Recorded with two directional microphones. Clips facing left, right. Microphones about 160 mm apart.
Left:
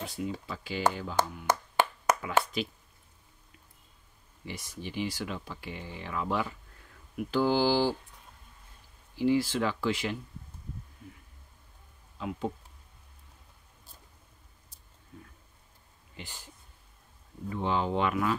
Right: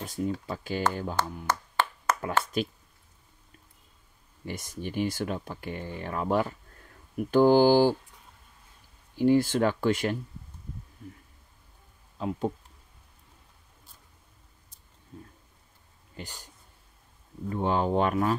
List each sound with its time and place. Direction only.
0.0 s speech: 45° right (ahead or behind)
1.2 s speech: 15° left (ahead or behind)
1.5 s clapping: 15° left (ahead or behind)
2.6 s speech: 45° right (ahead or behind)
4.5 s speech: 50° right (ahead or behind)
9.1 s speech: 50° right (ahead or behind)
12.2 s speech: 35° right (ahead or behind)
16.2 s speech: 40° right (ahead or behind)
17.5 s speech: 45° right (ahead or behind)